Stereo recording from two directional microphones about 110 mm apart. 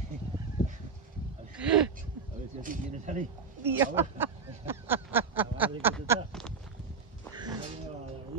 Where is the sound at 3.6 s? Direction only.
20° right (ahead or behind).